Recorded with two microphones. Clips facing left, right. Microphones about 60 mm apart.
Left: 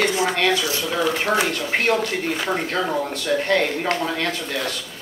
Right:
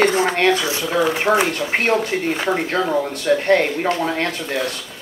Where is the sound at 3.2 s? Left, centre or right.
Right.